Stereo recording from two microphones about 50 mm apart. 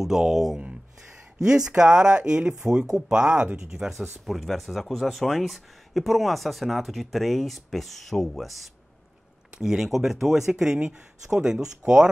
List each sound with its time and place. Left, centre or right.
0.0 s speech: centre
3.8 s speech: centre
9.6 s speech: centre